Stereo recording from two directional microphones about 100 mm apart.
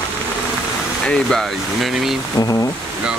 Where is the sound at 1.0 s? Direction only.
Centre (ahead or behind).